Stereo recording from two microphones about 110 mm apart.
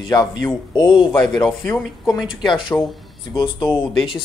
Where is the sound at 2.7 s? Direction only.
Centre (ahead or behind).